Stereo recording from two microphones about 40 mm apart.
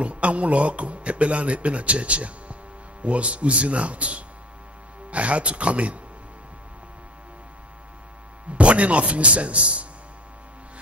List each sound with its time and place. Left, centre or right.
0.0 s speech: right
8.5 s speech: right